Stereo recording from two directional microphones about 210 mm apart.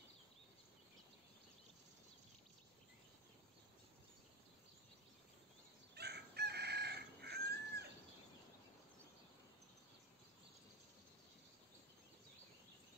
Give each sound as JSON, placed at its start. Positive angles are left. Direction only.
{"t": 5.9, "sound": "chicken", "side_deg": -50}